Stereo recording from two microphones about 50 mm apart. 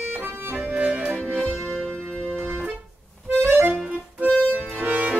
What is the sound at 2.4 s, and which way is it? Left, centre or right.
Organ, right.